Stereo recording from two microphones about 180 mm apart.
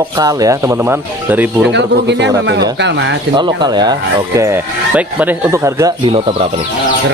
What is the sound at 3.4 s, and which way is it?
Speech, 25° right (ahead or behind).